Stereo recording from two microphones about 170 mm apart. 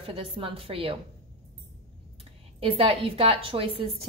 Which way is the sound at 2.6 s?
30° right (ahead or behind).